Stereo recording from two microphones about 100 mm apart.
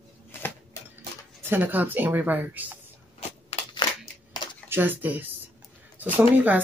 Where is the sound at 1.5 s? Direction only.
20° right (ahead or behind).